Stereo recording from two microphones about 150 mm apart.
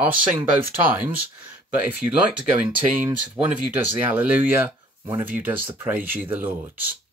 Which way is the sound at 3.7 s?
10° right (ahead or behind).